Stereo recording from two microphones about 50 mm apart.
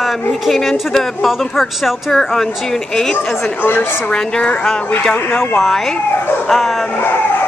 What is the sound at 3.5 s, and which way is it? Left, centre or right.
Speech, left.